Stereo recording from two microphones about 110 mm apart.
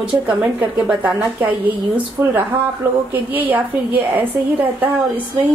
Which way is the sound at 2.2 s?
25° right (ahead or behind).